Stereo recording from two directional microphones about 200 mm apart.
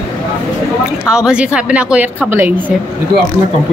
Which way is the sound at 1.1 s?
5° right (ahead or behind).